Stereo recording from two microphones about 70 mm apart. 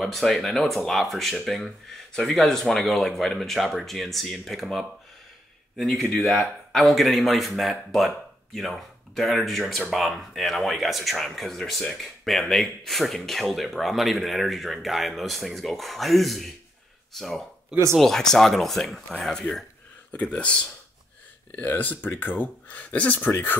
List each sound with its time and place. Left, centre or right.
0.0 s speech: centre
20.1 s speech: centre